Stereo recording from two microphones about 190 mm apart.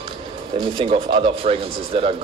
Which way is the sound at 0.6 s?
25° right (ahead or behind).